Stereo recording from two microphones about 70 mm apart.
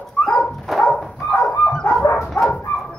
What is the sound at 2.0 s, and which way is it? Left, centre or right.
Dog, left.